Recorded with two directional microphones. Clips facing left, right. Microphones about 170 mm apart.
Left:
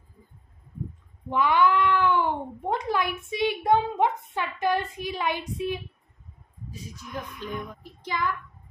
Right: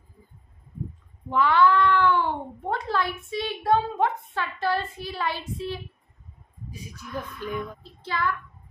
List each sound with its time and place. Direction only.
1.3 s a woman's voice: 15° left (ahead or behind)
6.9 s a child's voice: 15° left (ahead or behind)